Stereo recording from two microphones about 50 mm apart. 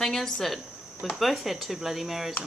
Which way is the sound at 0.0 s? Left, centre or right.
Centre.